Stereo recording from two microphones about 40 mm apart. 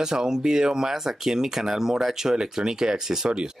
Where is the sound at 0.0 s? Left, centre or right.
Centre.